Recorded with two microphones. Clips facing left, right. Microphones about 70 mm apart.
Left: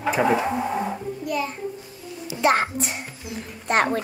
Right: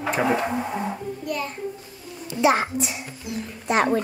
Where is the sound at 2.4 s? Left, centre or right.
Left.